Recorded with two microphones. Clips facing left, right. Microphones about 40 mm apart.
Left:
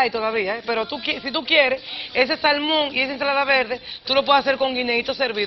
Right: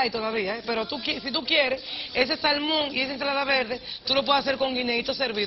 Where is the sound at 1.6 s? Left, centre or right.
Centre.